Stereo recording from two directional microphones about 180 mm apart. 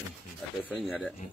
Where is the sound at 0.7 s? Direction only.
5° left (ahead or behind).